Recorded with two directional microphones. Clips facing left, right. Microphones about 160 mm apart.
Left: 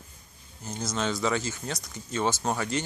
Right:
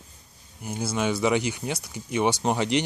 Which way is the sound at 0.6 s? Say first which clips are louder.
Right 4 dB; 10° right (ahead or behind).